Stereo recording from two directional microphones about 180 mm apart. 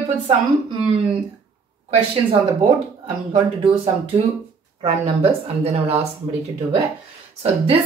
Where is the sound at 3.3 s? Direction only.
30° right (ahead or behind).